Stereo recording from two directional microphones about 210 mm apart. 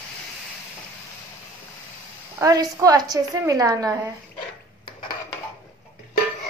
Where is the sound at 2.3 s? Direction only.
15° right (ahead or behind).